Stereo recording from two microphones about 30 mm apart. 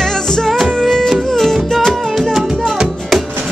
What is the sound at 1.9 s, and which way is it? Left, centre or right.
Music, centre.